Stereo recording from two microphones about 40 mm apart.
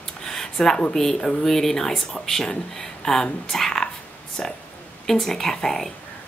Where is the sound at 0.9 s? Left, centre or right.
Centre.